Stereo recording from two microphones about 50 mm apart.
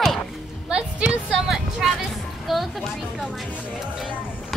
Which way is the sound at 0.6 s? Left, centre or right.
Right.